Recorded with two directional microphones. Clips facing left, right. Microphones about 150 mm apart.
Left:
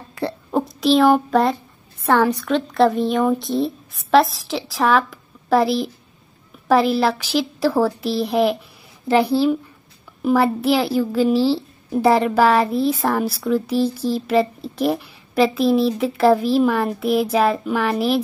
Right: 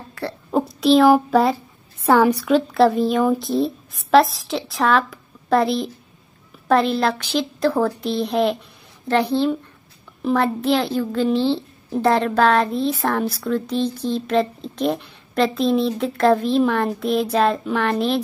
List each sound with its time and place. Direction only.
0.2 s speech: 15° left (ahead or behind)
0.5 s a child's voice: centre (ahead or behind)